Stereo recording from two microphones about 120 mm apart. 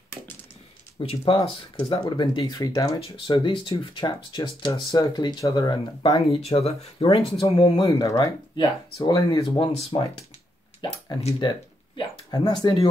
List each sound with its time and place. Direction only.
0.9 s speech: 45° left (ahead or behind)
3.0 s speech: 45° left (ahead or behind)
6.1 s speech: 55° left (ahead or behind)
8.0 s speech: 25° left (ahead or behind); by 10.1 s 45° left (ahead or behind)
12.0 s speech: 35° left (ahead or behind)